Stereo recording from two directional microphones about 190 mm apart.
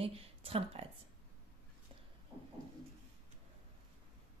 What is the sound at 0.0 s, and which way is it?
Speech, 30° right (ahead or behind).